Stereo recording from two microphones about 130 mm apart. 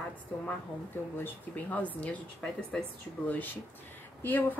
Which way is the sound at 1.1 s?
15° left (ahead or behind).